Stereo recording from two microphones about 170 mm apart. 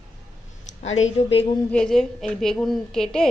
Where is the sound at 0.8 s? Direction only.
40° left (ahead or behind).